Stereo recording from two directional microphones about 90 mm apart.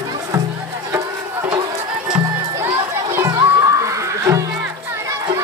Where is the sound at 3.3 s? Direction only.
40° right (ahead or behind).